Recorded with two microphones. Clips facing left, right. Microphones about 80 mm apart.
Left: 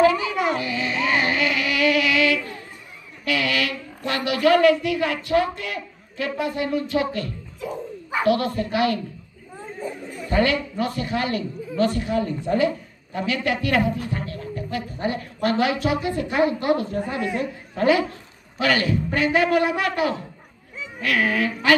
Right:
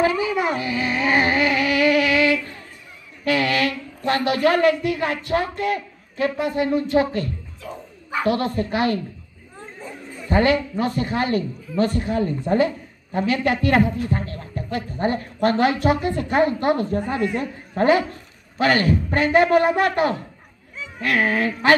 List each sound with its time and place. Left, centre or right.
0.0 s a sound: right
3.3 s a woman's voice: right
8.3 s a woman's voice: right
10.3 s a woman's voice: right